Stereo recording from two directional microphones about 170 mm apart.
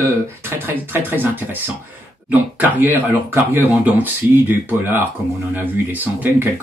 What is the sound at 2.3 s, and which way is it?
Speech, 10° right (ahead or behind).